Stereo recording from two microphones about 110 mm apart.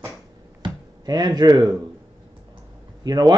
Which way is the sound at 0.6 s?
40° right (ahead or behind).